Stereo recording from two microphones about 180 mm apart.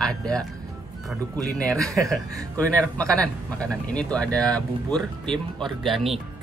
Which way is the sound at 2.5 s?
10° left (ahead or behind).